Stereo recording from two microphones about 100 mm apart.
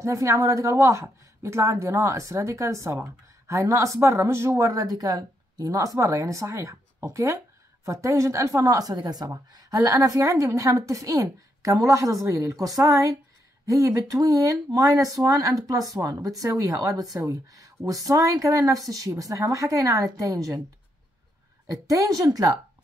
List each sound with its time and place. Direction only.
0.0 s a woman's voice: 30° right (ahead or behind)
21.8 s a woman's voice: 35° right (ahead or behind)